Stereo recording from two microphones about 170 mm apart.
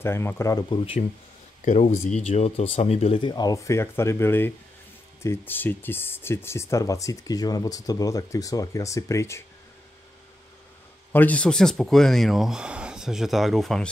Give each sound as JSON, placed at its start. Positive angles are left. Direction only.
{"t": 0.0, "sound": "speech", "side_deg": 15}
{"t": 1.6, "sound": "speech", "side_deg": 45}
{"t": 11.1, "sound": "speech", "side_deg": 10}